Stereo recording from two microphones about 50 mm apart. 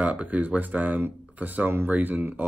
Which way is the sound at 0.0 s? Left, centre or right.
Right.